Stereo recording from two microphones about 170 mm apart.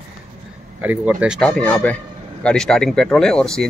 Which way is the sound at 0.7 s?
10° right (ahead or behind).